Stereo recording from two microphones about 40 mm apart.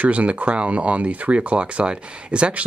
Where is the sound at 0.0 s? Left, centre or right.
Right.